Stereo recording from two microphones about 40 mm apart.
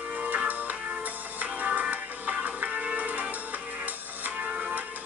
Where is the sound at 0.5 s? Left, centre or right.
Right.